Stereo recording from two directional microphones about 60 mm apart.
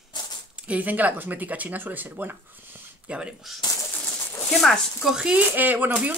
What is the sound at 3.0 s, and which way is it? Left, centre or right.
Speech, centre.